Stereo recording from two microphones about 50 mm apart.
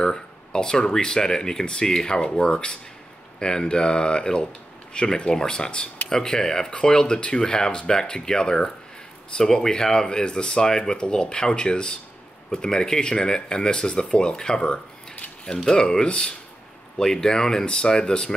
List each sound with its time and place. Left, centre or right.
0.0 s speech: centre